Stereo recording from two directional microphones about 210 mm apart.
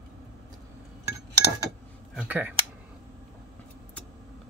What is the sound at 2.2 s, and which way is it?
Speech, 10° right (ahead or behind).